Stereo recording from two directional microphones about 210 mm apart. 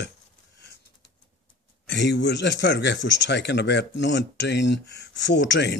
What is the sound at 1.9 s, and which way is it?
Speech, 55° left (ahead or behind).